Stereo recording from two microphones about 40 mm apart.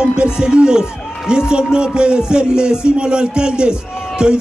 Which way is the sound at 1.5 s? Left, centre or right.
Right.